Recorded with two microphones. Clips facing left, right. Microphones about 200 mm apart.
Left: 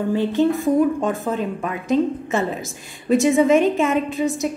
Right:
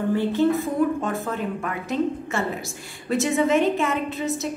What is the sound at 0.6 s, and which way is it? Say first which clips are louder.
A woman's voice: left 5 dB; 15° left (ahead or behind).